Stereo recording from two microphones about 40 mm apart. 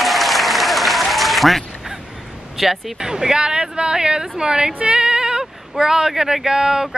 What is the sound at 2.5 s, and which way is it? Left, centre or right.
Speech, centre.